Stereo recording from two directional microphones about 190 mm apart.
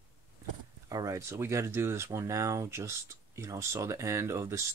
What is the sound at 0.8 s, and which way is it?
Speech, 15° right (ahead or behind).